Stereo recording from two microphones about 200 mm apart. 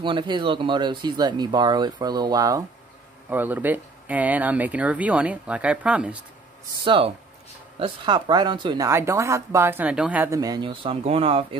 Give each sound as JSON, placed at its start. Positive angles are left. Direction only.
{"t": 0.0, "sound": "speech", "side_deg": -25}
{"t": 6.8, "sound": "speech", "side_deg": -25}